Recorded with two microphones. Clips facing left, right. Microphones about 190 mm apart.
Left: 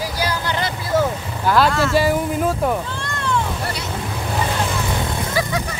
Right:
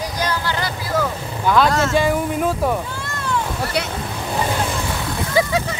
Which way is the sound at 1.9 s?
5° left (ahead or behind).